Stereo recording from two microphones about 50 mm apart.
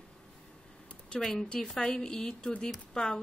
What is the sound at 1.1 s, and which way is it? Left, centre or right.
A woman's voice, centre.